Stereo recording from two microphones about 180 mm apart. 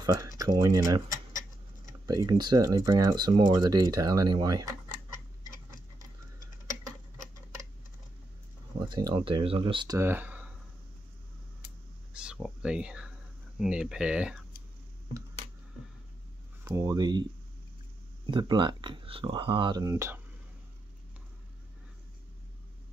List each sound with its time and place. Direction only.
0.0 s speech: 20° right (ahead or behind)
8.7 s speech: 25° right (ahead or behind)
9.9 s speech: 10° right (ahead or behind)
12.1 s a sound: 5° right (ahead or behind)
13.6 s speech: 5° right (ahead or behind)
16.6 s speech: 20° right (ahead or behind)
18.3 s speech: 25° right (ahead or behind)